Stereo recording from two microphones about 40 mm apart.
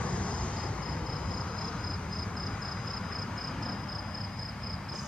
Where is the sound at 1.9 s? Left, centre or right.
Centre.